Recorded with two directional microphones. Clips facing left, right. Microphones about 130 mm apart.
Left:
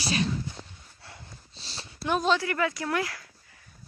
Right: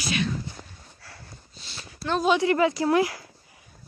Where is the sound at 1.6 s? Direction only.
35° left (ahead or behind).